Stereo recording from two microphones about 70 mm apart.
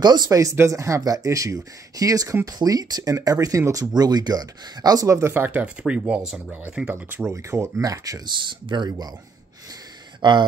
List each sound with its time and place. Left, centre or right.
0.0 s speech: right
0.4 s speech: right
3.8 s speech: right
5.0 s speech: right
5.3 s speech: right
7.2 s speech: right
7.8 s speech: right
8.5 s speech: right
10.2 s speech: right